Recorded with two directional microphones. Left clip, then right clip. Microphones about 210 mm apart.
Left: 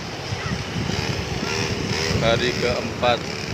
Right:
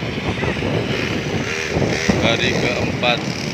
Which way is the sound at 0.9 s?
55° left (ahead or behind).